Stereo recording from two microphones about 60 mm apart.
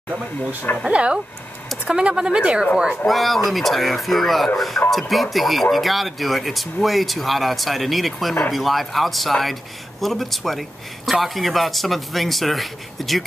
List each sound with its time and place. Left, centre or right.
0.8 s speech: centre
3.1 s speech: centre